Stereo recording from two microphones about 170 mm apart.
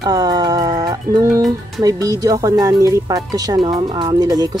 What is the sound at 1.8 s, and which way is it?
Speech, 20° right (ahead or behind).